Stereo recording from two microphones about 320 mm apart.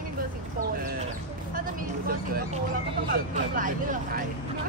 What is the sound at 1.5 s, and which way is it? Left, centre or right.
Speech, right.